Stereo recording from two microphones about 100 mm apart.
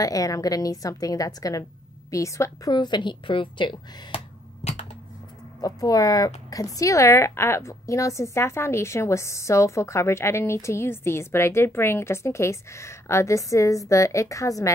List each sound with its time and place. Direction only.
0.0 s a woman's voice: 35° left (ahead or behind)
2.7 s speech: 50° left (ahead or behind)
5.6 s speech: 40° left (ahead or behind)